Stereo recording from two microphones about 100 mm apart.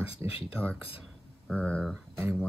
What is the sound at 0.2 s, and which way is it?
Speech, 20° right (ahead or behind).